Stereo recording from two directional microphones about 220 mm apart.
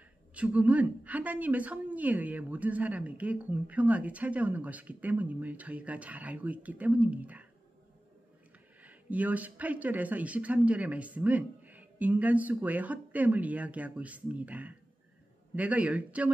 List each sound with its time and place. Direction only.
0.3 s a woman's voice: 5° right (ahead or behind)
8.8 s a woman's voice: 5° right (ahead or behind)